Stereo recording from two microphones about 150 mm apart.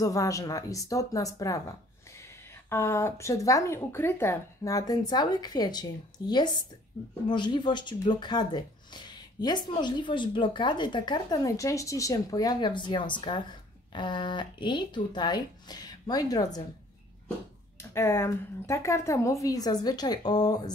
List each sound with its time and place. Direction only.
0.0 s a woman's voice: 25° left (ahead or behind)
17.7 s speech: 15° left (ahead or behind)